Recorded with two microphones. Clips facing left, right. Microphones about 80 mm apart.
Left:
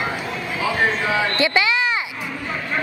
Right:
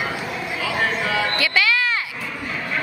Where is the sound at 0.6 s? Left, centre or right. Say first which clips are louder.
Left 3 dB; centre.